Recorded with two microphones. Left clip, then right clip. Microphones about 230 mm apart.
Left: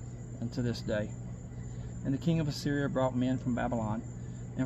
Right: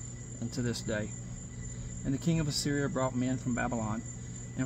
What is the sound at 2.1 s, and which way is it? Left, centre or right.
Speech, centre.